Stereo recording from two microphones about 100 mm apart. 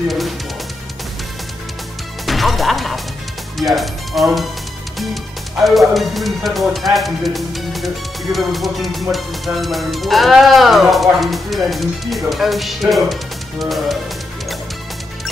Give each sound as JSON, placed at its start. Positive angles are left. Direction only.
{"t": 2.2, "sound": "music", "side_deg": 0}
{"t": 3.5, "sound": "speech", "side_deg": 0}